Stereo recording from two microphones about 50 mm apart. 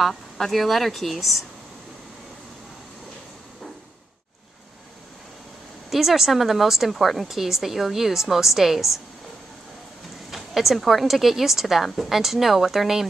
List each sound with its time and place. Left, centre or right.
0.0 s speech: centre
5.9 s speech: centre
10.3 s speech: centre